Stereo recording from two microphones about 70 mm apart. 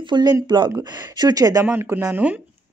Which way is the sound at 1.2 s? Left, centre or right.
Right.